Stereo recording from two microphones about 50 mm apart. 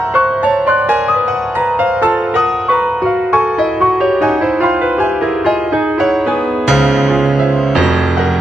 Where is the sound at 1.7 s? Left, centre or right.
Right.